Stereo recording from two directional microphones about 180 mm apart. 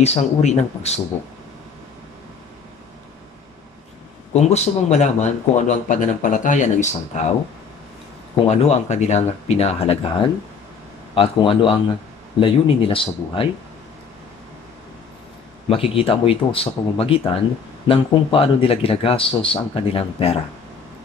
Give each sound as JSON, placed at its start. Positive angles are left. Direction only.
{"t": 0.0, "sound": "speech", "side_deg": 40}
{"t": 4.3, "sound": "speech", "side_deg": 35}
{"t": 8.5, "sound": "speech", "side_deg": 40}
{"t": 11.1, "sound": "speech", "side_deg": 30}
{"t": 15.7, "sound": "speech", "side_deg": 30}